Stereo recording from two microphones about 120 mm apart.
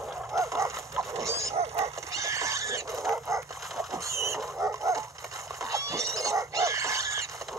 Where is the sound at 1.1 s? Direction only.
25° right (ahead or behind).